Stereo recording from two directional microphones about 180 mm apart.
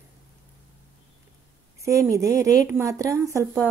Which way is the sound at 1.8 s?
15° right (ahead or behind).